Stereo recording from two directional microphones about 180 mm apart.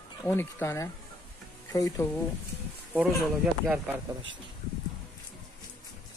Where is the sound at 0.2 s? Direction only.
10° left (ahead or behind).